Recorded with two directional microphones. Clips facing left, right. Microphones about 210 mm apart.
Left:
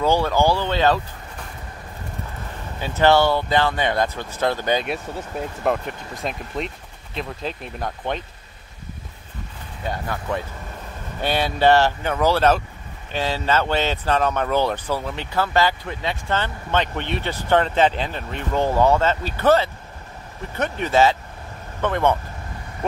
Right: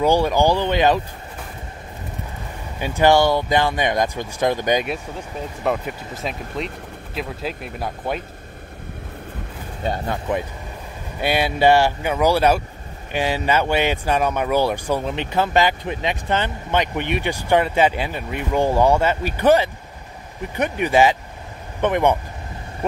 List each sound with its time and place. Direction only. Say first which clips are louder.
0.0 s speech: right 2 dB; 15° right (ahead or behind)
2.8 s speech: right 1 dB; 15° right (ahead or behind)
5.6 s speech: right 1 dB; centre (ahead or behind)
9.8 s speech: right 3 dB; 25° right (ahead or behind)